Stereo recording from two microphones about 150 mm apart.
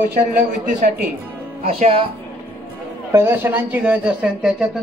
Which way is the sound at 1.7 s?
45° right (ahead or behind).